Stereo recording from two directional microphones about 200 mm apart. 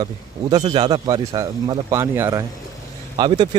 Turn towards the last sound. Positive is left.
turn(degrees=-20)  # may be behind; listen again after turning